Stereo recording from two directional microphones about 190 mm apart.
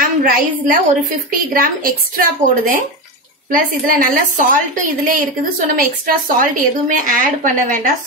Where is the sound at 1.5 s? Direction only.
50° right (ahead or behind).